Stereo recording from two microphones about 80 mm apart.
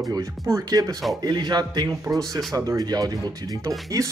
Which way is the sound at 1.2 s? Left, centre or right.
Right.